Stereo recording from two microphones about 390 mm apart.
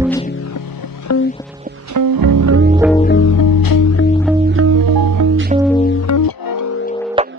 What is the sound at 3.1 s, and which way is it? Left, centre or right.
Music, left.